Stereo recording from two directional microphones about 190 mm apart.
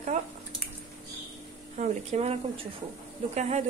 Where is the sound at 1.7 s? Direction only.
35° right (ahead or behind).